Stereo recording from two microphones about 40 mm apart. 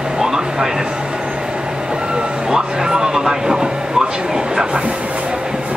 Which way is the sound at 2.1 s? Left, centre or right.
Centre.